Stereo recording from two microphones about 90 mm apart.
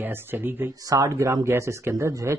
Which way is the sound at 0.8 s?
35° right (ahead or behind).